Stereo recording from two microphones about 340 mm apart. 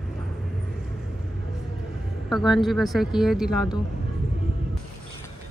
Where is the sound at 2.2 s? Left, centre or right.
Centre.